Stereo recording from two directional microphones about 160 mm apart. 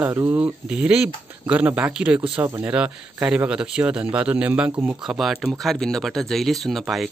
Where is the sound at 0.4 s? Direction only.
5° right (ahead or behind).